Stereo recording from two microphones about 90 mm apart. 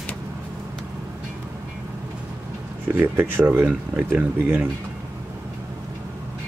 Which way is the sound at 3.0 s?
25° right (ahead or behind).